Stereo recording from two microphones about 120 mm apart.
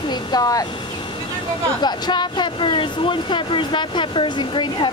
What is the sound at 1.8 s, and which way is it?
Speech, 40° left (ahead or behind).